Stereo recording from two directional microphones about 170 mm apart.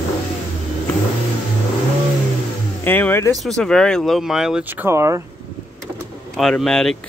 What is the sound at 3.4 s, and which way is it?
Speech, 5° left (ahead or behind).